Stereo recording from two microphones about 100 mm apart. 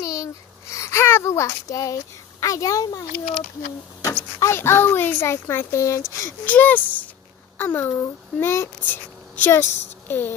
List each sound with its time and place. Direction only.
0.0 s babbling: 35° left (ahead or behind)
0.7 s speech: 30° left (ahead or behind)
6.4 s speech: 15° left (ahead or behind)